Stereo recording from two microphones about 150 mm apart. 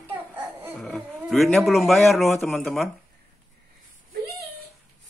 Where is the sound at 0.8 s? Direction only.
5° left (ahead or behind).